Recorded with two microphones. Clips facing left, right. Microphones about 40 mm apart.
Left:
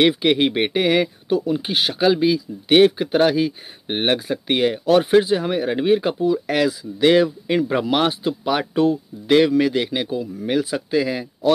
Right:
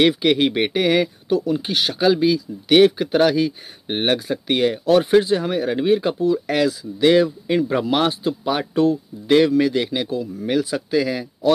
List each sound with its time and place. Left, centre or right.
0.0 s speech: centre
0.8 s speech: left
4.2 s speech: left
10.0 s speech: left
10.5 s speech: left